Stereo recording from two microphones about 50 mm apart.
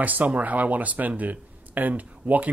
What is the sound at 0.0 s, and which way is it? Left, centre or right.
Speech, right.